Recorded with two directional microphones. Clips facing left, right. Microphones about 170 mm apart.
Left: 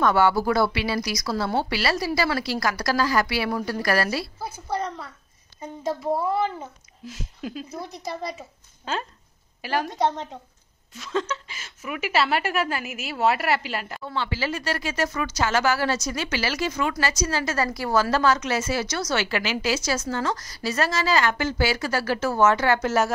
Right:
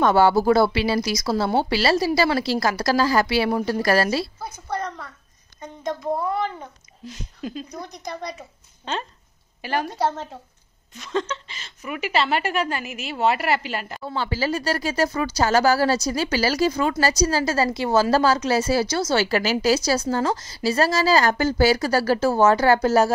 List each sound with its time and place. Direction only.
0.0 s speech: 30° right (ahead or behind)
4.4 s a sound: 5° left (ahead or behind)
5.6 s a child's voice: 5° left (ahead or behind)
14.0 s a woman's voice: 40° right (ahead or behind); by 18.1 s 25° right (ahead or behind)
18.1 s a woman's voice: 35° right (ahead or behind)